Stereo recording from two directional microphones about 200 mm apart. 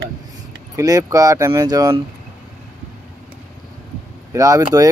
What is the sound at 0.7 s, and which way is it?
Speech, 15° right (ahead or behind).